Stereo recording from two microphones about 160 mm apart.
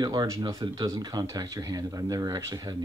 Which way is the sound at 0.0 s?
25° right (ahead or behind).